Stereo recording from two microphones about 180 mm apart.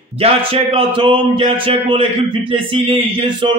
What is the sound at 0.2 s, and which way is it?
Speech, 30° right (ahead or behind).